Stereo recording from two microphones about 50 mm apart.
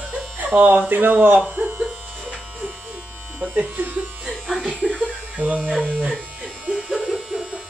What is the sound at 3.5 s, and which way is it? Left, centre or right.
Electric shaver, right.